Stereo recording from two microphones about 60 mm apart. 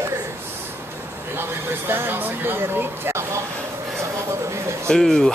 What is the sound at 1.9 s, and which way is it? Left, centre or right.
Speech, right.